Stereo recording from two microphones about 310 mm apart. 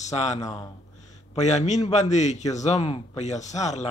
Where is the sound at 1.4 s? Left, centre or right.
Left.